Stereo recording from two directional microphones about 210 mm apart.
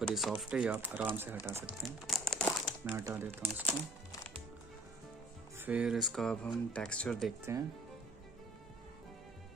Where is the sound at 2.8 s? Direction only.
10° right (ahead or behind).